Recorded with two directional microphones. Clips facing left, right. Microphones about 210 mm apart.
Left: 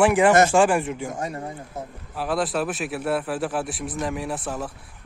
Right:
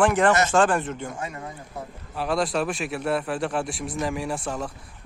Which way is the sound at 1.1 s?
40° left (ahead or behind).